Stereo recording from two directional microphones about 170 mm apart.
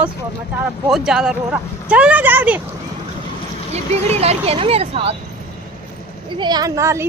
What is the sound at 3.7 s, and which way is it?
Speech, 40° right (ahead or behind).